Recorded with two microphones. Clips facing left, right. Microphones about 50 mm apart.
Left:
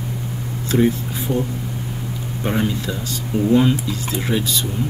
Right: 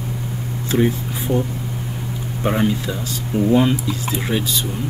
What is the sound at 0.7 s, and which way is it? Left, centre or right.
Speech, centre.